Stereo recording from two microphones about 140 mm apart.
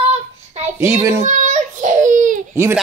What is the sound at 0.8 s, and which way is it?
Speech, 20° right (ahead or behind).